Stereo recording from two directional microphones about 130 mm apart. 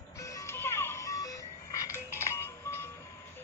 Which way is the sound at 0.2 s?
25° left (ahead or behind).